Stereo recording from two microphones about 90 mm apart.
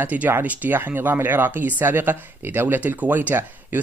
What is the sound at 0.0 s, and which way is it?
Speech, 20° right (ahead or behind).